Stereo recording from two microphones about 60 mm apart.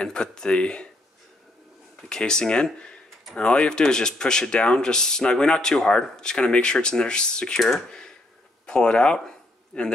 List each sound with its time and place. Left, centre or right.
0.0 s speech: centre
2.0 s speech: centre
8.6 s speech: centre